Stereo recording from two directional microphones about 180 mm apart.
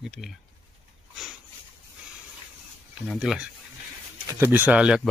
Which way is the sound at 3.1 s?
5° right (ahead or behind).